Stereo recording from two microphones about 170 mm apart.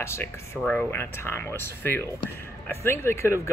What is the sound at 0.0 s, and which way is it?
Speech, 15° left (ahead or behind).